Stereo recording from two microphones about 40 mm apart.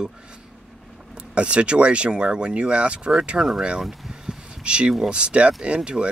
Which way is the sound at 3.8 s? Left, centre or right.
Centre.